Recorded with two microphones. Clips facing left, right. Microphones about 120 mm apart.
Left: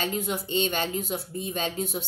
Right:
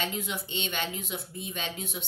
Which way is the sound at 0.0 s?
40° left (ahead or behind).